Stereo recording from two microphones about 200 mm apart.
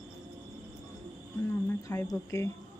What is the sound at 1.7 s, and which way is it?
Speech, 15° left (ahead or behind).